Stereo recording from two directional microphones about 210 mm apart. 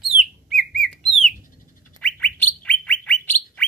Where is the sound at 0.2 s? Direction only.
Centre (ahead or behind).